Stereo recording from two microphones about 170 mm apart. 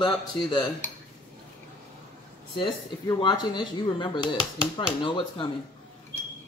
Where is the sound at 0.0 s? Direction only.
25° left (ahead or behind).